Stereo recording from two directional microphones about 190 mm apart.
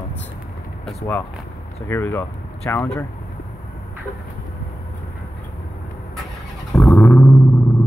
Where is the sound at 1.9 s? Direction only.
10° left (ahead or behind).